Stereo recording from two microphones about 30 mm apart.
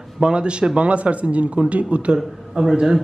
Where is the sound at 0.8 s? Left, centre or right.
Right.